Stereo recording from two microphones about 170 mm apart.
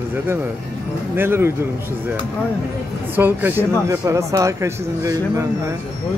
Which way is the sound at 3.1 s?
10° right (ahead or behind).